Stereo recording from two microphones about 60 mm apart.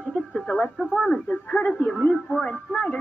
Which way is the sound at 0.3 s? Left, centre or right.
Centre.